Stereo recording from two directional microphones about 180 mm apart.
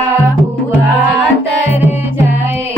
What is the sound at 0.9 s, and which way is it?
Music, 10° right (ahead or behind).